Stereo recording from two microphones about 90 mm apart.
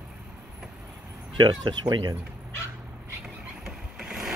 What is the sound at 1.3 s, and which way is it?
Speech, 60° right (ahead or behind).